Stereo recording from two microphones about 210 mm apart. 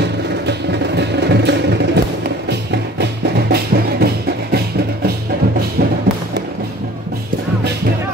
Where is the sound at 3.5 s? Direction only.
50° right (ahead or behind).